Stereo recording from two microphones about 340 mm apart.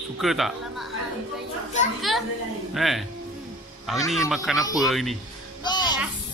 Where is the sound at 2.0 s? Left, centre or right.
Centre.